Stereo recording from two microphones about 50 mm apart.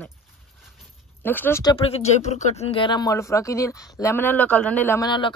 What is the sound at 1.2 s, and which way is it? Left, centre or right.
Speech, left.